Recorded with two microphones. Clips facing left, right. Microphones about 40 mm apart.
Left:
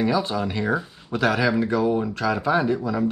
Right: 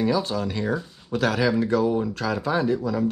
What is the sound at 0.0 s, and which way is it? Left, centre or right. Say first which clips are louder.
Speech: left 1 dB; centre.